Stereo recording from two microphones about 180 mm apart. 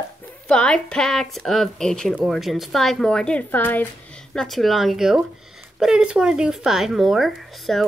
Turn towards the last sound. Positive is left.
turn(degrees=0)  # may be behind; listen again after turning